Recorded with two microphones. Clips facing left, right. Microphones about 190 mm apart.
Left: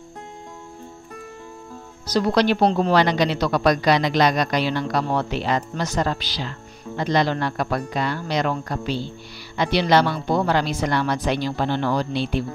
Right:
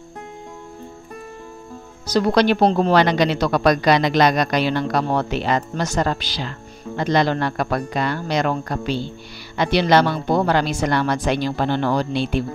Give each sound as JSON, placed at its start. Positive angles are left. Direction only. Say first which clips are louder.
{"t": 2.1, "sound": "a woman's voice", "louder": "right 2 dB", "side_deg": -55}